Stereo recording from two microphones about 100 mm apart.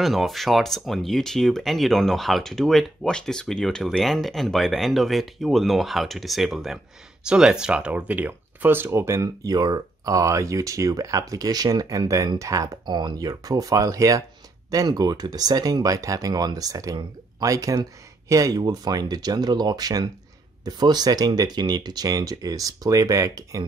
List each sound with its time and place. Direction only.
0.0 s speech: centre (ahead or behind); by 12.7 s 35° right (ahead or behind)
12.8 s speech: 45° right (ahead or behind)